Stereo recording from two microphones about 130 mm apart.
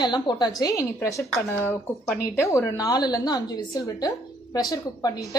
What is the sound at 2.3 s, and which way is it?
A woman's voice, 20° left (ahead or behind).